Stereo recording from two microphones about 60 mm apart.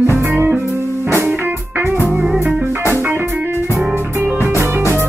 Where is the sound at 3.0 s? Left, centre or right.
Right.